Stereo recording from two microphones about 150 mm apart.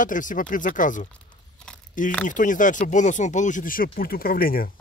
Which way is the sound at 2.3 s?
60° left (ahead or behind).